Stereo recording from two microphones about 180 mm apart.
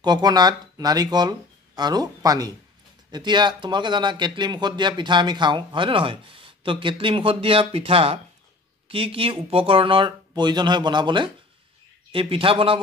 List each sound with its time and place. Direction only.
0.0 s a man's voice: 25° right (ahead or behind)